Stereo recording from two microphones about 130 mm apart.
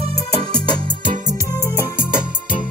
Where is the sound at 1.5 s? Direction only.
25° left (ahead or behind).